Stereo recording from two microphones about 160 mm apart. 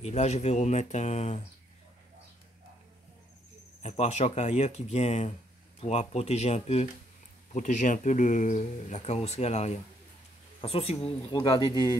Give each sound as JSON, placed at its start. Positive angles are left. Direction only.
{"t": 0.0, "sound": "speech", "side_deg": 45}
{"t": 3.8, "sound": "speech", "side_deg": 45}